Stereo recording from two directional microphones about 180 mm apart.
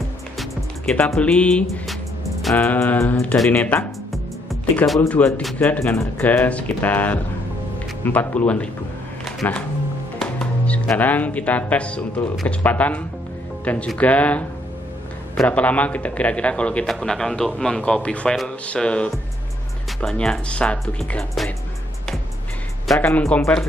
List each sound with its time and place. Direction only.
0.4 s speech: 5° left (ahead or behind)
10.1 s music: 5° left (ahead or behind)
10.9 s speech: 10° left (ahead or behind)
22.8 s speech: 10° left (ahead or behind)